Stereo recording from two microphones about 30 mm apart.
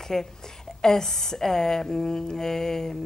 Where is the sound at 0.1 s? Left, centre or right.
Centre.